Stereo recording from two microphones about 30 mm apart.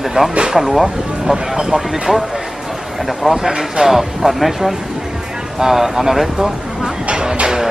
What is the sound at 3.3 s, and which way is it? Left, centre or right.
Speech, right.